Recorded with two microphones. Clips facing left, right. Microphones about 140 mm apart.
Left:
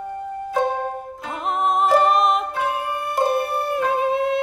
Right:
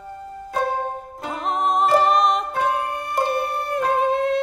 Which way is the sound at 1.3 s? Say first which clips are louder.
Even; centre (ahead or behind).